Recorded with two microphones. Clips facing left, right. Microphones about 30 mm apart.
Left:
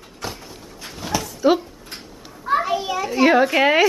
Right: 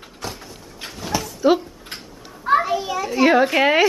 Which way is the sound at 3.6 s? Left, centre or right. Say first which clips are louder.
Even; centre.